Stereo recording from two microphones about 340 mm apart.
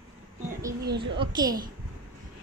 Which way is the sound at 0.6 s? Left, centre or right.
Centre.